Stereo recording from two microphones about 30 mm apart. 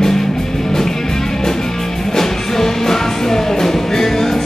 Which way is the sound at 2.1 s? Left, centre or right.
Centre.